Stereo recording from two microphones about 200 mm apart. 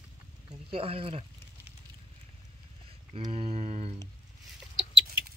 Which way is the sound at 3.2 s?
30° right (ahead or behind).